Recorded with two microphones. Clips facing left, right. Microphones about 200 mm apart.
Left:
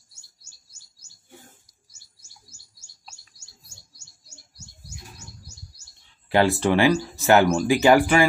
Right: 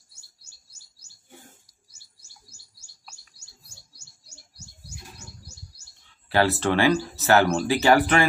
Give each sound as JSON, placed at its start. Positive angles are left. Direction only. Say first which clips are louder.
{"t": 2.5, "sound": "chirp", "louder": "left 1 dB", "side_deg": -55}
{"t": 6.2, "sound": "speech", "louder": "left 2 dB", "side_deg": 15}